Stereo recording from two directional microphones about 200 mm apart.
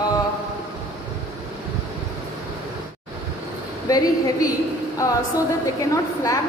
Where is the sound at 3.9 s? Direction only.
20° left (ahead or behind).